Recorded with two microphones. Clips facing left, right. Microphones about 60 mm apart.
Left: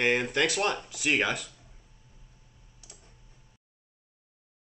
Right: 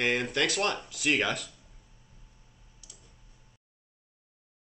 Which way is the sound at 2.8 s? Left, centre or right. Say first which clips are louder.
Left 3 dB; left.